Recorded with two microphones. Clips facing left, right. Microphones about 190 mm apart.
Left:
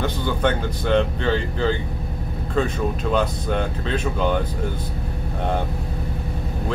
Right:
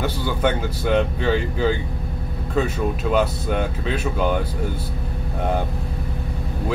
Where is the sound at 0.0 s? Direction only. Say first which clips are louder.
Even; 10° right (ahead or behind).